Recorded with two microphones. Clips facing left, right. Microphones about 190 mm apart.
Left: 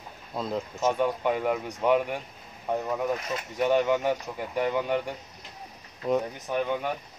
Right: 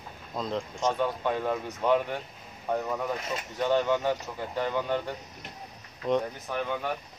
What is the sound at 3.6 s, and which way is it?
Speech, 15° left (ahead or behind).